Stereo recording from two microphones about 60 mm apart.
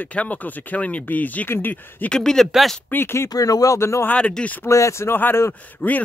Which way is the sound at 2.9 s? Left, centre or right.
Left.